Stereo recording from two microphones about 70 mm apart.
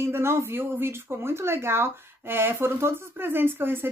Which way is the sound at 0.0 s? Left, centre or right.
Right.